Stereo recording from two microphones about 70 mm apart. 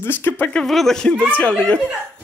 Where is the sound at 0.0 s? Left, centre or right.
Left.